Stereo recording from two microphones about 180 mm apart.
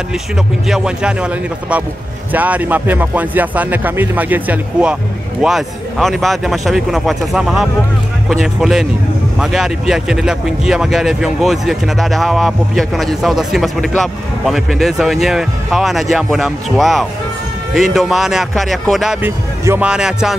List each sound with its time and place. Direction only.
0.7 s speech: 5° right (ahead or behind)
19.2 s speech: 10° right (ahead or behind)